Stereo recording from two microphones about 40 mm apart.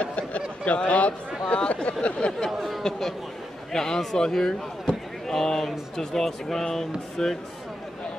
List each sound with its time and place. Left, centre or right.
0.0 s a man's voice: left
1.4 s a sound: left
2.8 s speech: centre